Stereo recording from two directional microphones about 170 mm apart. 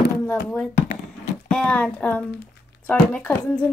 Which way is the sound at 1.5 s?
5° left (ahead or behind).